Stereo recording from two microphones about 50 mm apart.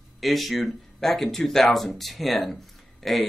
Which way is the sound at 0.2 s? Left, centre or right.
Centre.